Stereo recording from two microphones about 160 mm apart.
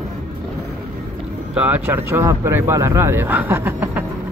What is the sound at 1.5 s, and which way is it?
Speech, 10° right (ahead or behind).